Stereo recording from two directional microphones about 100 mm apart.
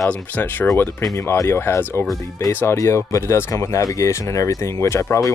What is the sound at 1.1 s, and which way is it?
Speech, 30° left (ahead or behind).